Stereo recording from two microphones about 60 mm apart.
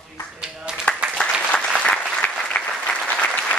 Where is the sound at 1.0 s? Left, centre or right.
Centre.